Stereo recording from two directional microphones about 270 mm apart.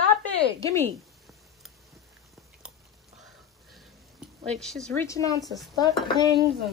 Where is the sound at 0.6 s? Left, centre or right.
Centre.